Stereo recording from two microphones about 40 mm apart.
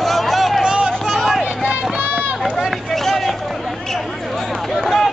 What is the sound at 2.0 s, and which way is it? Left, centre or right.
Run, right.